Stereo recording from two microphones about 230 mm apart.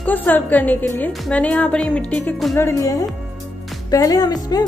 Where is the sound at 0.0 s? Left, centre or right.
Centre.